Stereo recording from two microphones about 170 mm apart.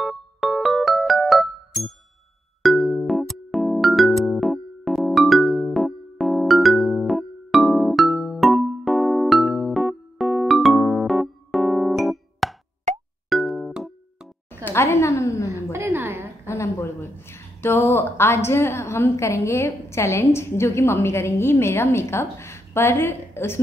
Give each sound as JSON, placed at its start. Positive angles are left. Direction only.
{"t": 0.0, "sound": "music", "side_deg": 0}
{"t": 12.9, "sound": "music", "side_deg": -45}
{"t": 13.3, "sound": "music", "side_deg": 0}
{"t": 14.6, "sound": "a sound", "side_deg": 15}
{"t": 15.7, "sound": "a sound", "side_deg": -15}
{"t": 16.4, "sound": "speech", "side_deg": 15}